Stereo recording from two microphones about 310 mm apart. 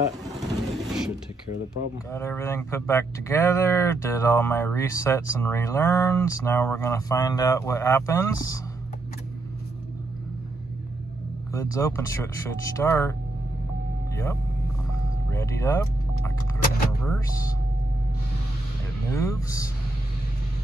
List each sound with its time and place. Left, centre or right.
0.5 s machine gun: centre
2.0 s speech: centre
11.5 s speech: centre
14.1 s speech: centre
15.3 s vehicle: centre
19.0 s speech: centre